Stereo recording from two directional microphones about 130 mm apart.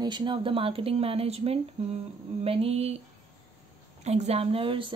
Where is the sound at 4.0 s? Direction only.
60° right (ahead or behind); by 4.9 s 40° right (ahead or behind).